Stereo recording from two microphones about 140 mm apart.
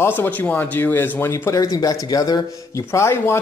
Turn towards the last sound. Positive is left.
turn(degrees=20)  # may be behind; listen again after turning